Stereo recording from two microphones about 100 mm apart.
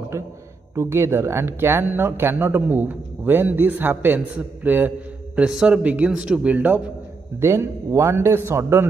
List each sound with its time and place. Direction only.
0.1 s a sound: 25° right (ahead or behind)
0.7 s a man's voice: 25° right (ahead or behind)
7.3 s speech: 25° right (ahead or behind)